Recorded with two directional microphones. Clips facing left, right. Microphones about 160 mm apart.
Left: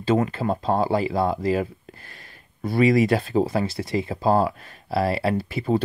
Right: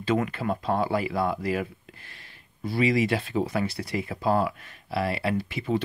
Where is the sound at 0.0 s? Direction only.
30° left (ahead or behind).